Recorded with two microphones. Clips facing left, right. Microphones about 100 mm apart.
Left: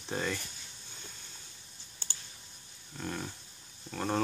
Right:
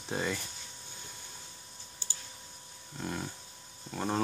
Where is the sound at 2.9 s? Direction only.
10° right (ahead or behind).